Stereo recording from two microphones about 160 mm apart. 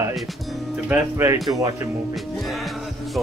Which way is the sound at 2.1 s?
Centre (ahead or behind).